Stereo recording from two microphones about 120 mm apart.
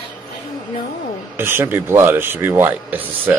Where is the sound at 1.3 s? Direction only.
20° right (ahead or behind).